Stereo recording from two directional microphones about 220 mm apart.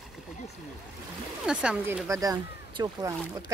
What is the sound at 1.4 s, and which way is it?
Speech, 5° right (ahead or behind).